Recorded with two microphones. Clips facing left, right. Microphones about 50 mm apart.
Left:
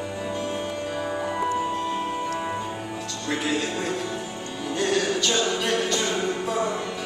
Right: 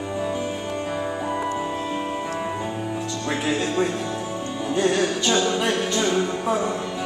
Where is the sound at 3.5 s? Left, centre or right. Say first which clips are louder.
Right 5 dB; right.